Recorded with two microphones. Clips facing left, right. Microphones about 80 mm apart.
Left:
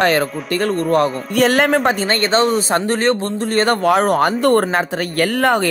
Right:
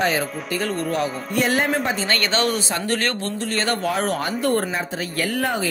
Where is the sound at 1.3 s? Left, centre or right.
Left.